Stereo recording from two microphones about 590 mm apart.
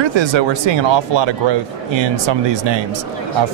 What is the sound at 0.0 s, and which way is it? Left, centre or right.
Speech, right.